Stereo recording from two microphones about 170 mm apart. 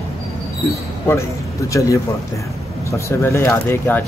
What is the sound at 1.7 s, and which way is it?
Speech, 20° left (ahead or behind).